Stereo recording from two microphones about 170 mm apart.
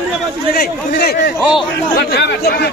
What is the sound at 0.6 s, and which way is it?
A man's voice, 65° left (ahead or behind).